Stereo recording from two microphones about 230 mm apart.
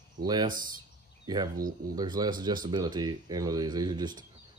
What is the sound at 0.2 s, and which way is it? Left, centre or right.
Speech, centre.